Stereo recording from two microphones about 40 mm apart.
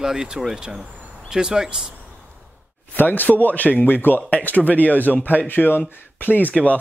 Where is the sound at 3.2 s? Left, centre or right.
Left.